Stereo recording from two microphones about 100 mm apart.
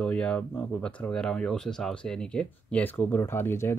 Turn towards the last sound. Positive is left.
turn(degrees=20)  # may be behind; listen again after turning